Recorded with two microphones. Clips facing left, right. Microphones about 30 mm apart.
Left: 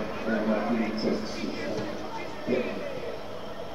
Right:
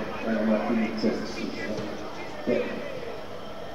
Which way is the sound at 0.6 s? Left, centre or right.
Centre.